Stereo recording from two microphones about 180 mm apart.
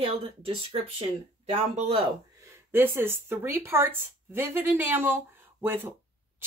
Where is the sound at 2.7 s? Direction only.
10° right (ahead or behind).